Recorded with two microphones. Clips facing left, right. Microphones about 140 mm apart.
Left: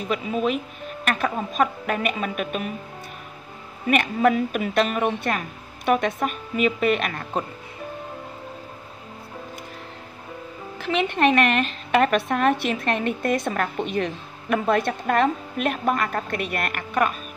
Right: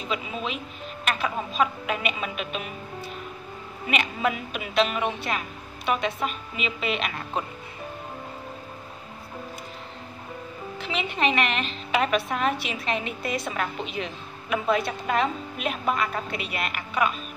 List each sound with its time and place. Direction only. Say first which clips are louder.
0.1 s a woman's voice: left 7 dB; 50° left (ahead or behind)
3.9 s a woman's voice: left 7 dB; 50° left (ahead or behind)
10.8 s a woman's voice: left 6 dB; 55° left (ahead or behind)